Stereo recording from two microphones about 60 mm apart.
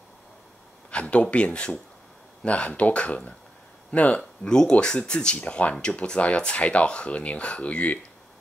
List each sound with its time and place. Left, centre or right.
0.8 s speech: centre
4.2 s speech: centre